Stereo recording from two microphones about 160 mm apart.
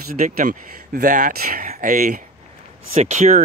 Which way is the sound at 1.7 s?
50° right (ahead or behind).